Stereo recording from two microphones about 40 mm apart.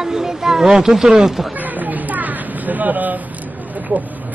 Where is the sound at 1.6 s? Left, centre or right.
Right.